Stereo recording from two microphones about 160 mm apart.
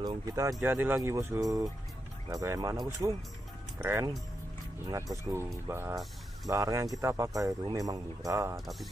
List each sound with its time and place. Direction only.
0.0 s speech: 25° right (ahead or behind)
5.1 s speech: 15° right (ahead or behind)
8.5 s mechanisms: centre (ahead or behind)